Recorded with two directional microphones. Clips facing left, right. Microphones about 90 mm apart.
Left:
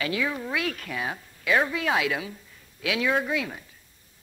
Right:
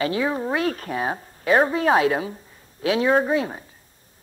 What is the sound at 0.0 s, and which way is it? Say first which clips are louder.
Speech: right 5 dB; 35° right (ahead or behind).